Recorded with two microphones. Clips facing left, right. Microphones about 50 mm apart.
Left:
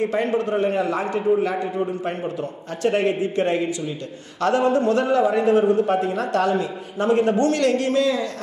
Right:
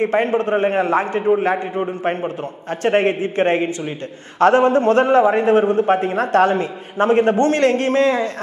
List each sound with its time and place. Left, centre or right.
0.0 s a man's voice: right